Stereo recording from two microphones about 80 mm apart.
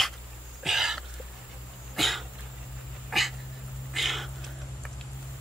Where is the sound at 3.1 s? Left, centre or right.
Centre.